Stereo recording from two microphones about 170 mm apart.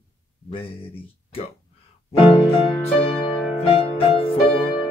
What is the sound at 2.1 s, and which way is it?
Music, 35° left (ahead or behind).